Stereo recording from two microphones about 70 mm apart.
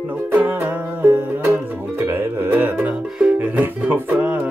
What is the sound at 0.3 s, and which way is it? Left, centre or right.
Music, right.